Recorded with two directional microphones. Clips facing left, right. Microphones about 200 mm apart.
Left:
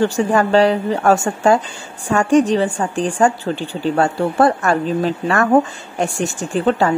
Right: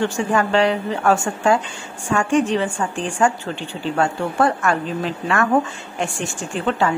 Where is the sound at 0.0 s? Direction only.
35° left (ahead or behind).